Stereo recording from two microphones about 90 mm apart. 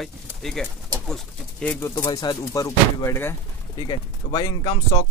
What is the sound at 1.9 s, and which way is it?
Speech, 50° left (ahead or behind).